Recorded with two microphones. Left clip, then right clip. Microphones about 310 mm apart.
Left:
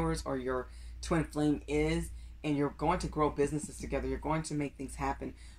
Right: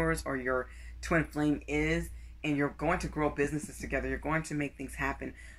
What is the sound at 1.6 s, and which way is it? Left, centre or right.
Speech, centre.